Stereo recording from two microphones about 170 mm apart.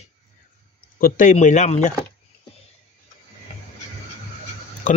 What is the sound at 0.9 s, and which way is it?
Speech, 50° left (ahead or behind).